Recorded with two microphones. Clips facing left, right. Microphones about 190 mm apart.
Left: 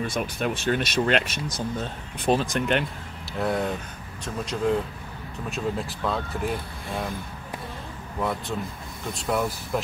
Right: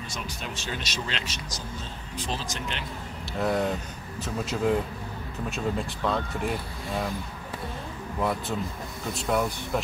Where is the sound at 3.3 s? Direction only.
Centre (ahead or behind).